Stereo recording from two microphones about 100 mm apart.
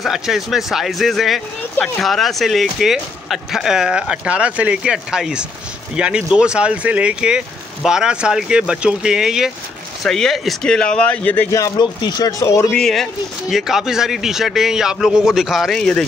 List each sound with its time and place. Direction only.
0.0 s speech: centre (ahead or behind); by 11.4 s 15° left (ahead or behind)
11.8 s speech: 50° left (ahead or behind)
12.3 s speech: 30° left (ahead or behind)
12.7 s speech: 5° left (ahead or behind)
15.8 s speech: 10° left (ahead or behind)